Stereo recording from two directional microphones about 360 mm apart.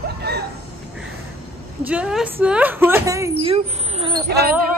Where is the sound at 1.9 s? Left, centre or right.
Centre.